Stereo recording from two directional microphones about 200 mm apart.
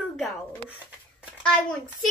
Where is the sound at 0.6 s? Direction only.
5° right (ahead or behind).